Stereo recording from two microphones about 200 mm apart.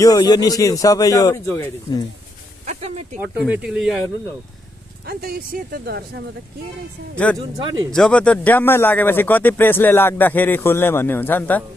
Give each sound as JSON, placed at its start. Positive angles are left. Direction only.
{"t": 0.0, "sound": "speech", "side_deg": 20}
{"t": 2.6, "sound": "speech", "side_deg": -35}
{"t": 3.2, "sound": "speech", "side_deg": -10}
{"t": 5.0, "sound": "speech", "side_deg": -50}
{"t": 7.3, "sound": "speech", "side_deg": -20}
{"t": 7.9, "sound": "speech", "side_deg": 5}